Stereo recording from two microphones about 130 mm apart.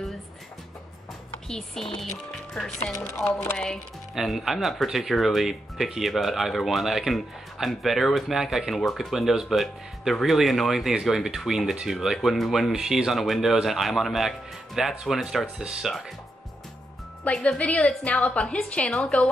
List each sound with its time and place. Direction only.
1.5 s speech: 5° left (ahead or behind)
2.8 s a woman's voice: 15° left (ahead or behind)
3.5 s speech: 5° left (ahead or behind)
17.2 s a woman's voice: 5° left (ahead or behind)